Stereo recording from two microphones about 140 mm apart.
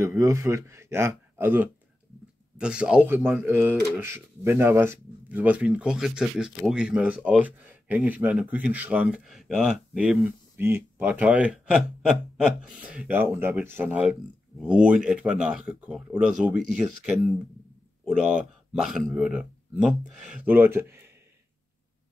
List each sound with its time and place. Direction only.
0.0 s a man's voice: 20° right (ahead or behind); by 10.3 s 5° right (ahead or behind)
10.6 s speech: 15° right (ahead or behind)